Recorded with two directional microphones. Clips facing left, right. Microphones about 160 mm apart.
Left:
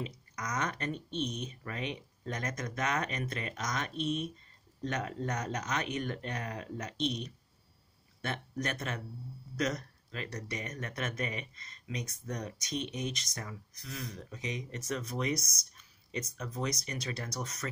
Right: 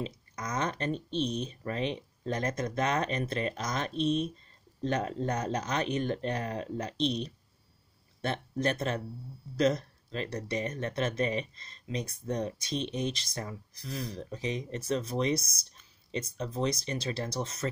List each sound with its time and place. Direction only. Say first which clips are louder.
0.0 s speech: right 3 dB; 30° right (ahead or behind)